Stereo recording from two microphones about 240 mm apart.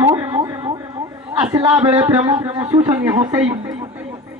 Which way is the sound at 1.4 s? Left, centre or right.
Centre.